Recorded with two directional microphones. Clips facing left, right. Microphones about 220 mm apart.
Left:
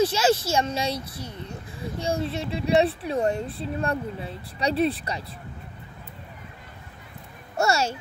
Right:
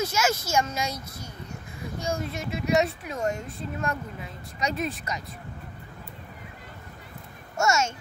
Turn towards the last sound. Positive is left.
turn(degrees=35)  # may be behind; listen again after turning